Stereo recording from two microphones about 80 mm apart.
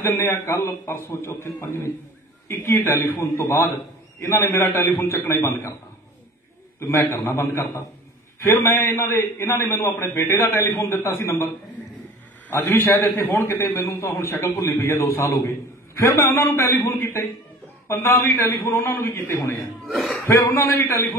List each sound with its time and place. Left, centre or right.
0.3 s a man's voice: left
6.8 s a man's voice: left